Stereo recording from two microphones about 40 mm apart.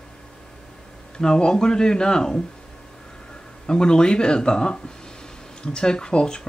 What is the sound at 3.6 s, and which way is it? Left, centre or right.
Speech, left.